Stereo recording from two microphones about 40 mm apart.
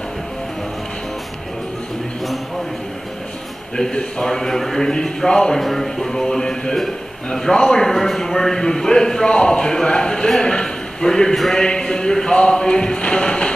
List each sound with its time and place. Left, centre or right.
3.9 s a man's voice: centre